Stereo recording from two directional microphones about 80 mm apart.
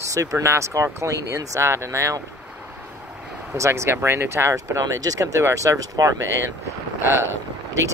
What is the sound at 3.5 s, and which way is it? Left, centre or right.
Speech, right.